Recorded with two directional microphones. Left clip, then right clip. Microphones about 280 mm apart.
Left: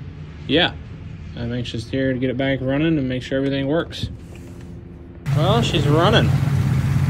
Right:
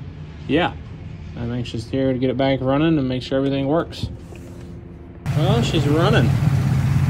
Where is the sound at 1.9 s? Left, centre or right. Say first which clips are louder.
Right 2 dB; centre.